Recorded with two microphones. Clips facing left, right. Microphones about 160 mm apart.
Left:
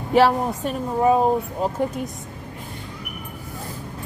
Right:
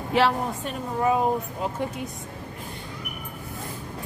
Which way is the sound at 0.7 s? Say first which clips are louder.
Left 6 dB; 35° left (ahead or behind).